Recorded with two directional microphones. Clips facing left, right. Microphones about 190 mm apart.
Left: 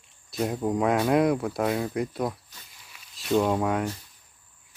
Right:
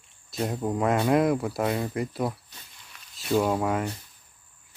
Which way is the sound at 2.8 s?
5° left (ahead or behind).